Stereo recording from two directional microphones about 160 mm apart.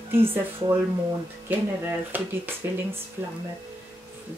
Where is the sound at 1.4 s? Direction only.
15° right (ahead or behind).